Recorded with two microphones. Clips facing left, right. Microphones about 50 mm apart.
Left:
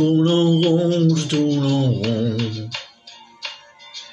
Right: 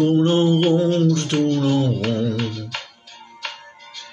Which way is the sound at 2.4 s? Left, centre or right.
Right.